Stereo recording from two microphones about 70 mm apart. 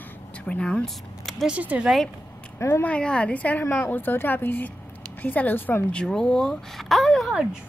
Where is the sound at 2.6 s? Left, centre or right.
Left.